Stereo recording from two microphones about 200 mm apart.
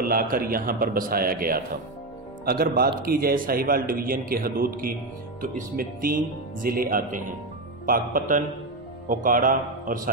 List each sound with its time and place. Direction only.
0.0 s a man's voice: 45° right (ahead or behind)